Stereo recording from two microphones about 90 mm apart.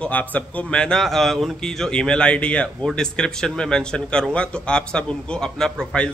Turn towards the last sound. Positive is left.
turn(degrees=10)  # may be behind; listen again after turning